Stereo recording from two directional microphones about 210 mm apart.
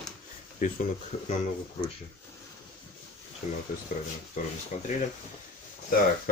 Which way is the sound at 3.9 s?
35° left (ahead or behind).